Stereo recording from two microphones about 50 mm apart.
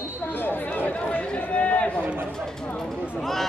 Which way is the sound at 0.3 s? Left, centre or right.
Left.